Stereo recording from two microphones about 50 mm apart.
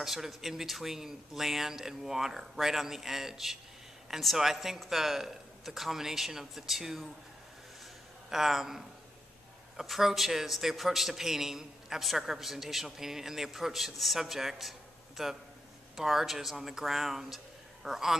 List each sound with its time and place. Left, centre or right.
0.0 s a man's voice: centre
8.3 s a man's voice: centre